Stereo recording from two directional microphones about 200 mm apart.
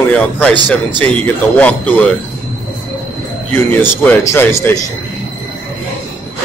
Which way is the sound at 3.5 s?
10° left (ahead or behind).